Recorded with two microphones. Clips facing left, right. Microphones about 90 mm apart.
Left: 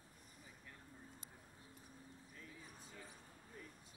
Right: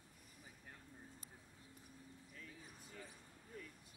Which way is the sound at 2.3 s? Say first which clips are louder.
Even; 25° left (ahead or behind).